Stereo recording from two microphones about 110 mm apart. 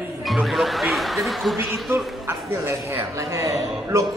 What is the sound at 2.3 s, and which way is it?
A man's voice, 20° right (ahead or behind).